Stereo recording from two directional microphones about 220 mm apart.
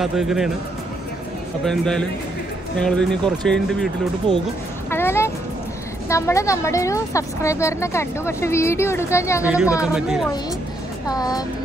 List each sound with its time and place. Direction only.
0.0 s speech: centre (ahead or behind)
1.6 s speech: centre (ahead or behind)
4.8 s music: 10° left (ahead or behind)
6.0 s a woman's voice: 15° left (ahead or behind)
9.4 s speech: 5° right (ahead or behind)
11.1 s a woman's voice: 15° left (ahead or behind)